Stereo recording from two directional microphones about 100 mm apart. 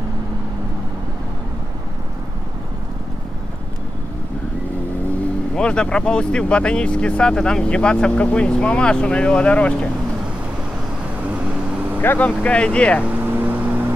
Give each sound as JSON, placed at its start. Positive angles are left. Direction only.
{"t": 5.6, "sound": "speech", "side_deg": 10}
{"t": 12.0, "sound": "speech", "side_deg": 15}
{"t": 13.0, "sound": "vehicle", "side_deg": -15}